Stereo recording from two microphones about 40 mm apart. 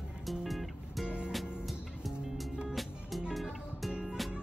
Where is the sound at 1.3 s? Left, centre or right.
Centre.